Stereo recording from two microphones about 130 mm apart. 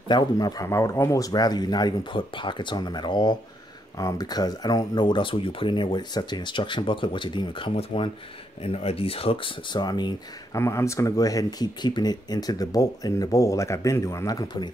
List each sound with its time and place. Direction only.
0.1 s speech: 30° left (ahead or behind)
10.5 s speech: 20° left (ahead or behind)